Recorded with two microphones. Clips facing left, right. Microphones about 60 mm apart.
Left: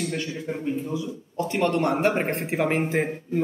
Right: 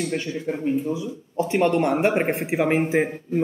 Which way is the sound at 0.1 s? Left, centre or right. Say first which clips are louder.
Right 3 dB; centre.